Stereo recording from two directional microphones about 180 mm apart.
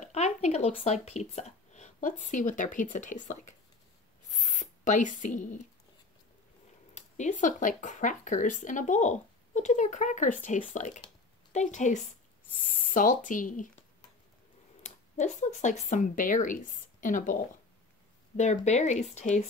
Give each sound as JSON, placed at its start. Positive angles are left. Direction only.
{"t": 0.0, "sound": "speech", "side_deg": 40}
{"t": 4.3, "sound": "spray", "side_deg": 40}
{"t": 6.9, "sound": "speech", "side_deg": 40}
{"t": 14.8, "sound": "speech", "side_deg": 40}